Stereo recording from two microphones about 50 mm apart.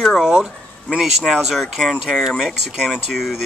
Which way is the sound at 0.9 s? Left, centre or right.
Centre.